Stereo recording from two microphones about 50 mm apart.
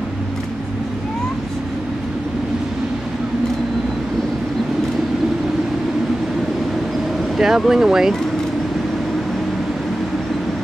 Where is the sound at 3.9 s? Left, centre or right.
Centre.